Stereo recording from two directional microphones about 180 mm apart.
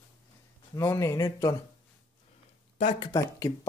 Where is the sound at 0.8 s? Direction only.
15° left (ahead or behind).